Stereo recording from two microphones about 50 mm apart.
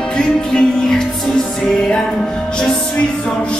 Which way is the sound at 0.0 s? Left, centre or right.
Centre.